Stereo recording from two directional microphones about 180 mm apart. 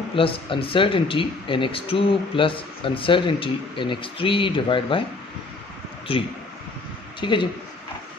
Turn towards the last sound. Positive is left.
turn(degrees=25)  # may be behind; listen again after turning